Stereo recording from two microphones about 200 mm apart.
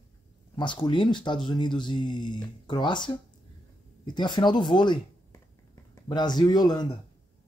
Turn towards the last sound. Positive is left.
turn(degrees=20)  # may be behind; listen again after turning